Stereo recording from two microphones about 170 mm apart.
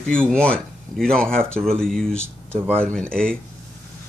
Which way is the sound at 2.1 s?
10° right (ahead or behind).